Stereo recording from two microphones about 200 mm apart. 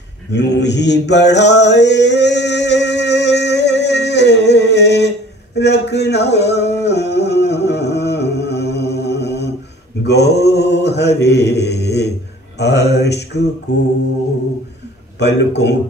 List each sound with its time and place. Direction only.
0.3 s mantra: 60° left (ahead or behind)
10.0 s a sound: 55° left (ahead or behind)
11.2 s speech: 60° left (ahead or behind)
12.5 s mantra: 60° left (ahead or behind)
15.1 s mantra: 60° left (ahead or behind)